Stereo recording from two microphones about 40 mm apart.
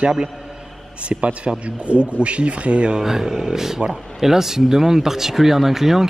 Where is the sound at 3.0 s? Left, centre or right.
Centre.